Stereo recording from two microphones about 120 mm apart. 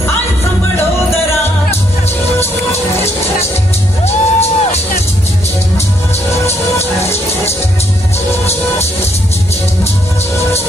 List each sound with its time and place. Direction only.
4.0 s music: 65° left (ahead or behind)
6.4 s music: 60° left (ahead or behind)